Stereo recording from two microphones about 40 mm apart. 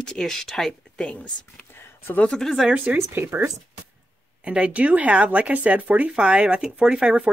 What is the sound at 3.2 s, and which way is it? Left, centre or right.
Speech, right.